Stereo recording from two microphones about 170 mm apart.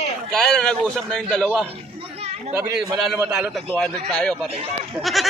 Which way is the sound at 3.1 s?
15° right (ahead or behind).